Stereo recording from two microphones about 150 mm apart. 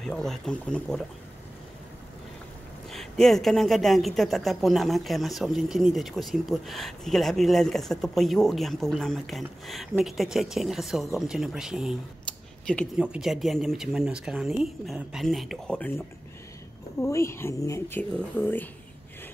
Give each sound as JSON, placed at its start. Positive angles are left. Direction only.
{"t": 0.0, "sound": "speech", "side_deg": 5}
{"t": 2.9, "sound": "speech", "side_deg": 0}
{"t": 12.9, "sound": "speech", "side_deg": -5}
{"t": 17.0, "sound": "speech", "side_deg": 20}